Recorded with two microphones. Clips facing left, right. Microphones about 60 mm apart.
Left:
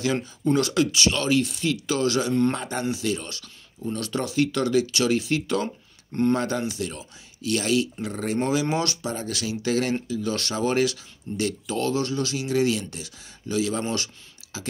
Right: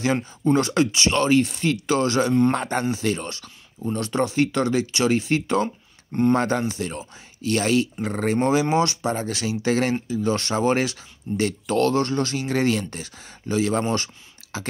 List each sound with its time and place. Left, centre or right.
0.0 s speech: right
11.7 s speech: right